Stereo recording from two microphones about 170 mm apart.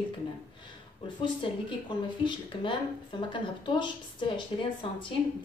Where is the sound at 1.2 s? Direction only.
30° left (ahead or behind).